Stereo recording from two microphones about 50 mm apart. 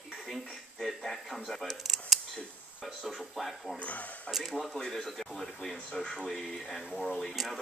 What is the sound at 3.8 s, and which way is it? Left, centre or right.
Speech, left.